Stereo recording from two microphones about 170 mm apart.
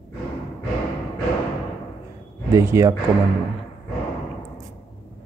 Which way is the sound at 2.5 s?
15° right (ahead or behind).